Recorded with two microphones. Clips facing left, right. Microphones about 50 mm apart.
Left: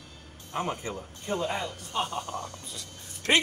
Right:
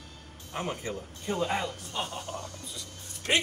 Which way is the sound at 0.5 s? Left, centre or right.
Centre.